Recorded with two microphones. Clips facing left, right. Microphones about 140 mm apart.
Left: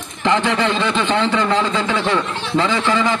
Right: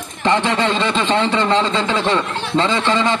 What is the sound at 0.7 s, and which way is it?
A man's voice, 20° right (ahead or behind).